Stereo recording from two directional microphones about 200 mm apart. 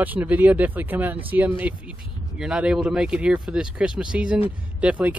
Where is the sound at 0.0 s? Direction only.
10° right (ahead or behind).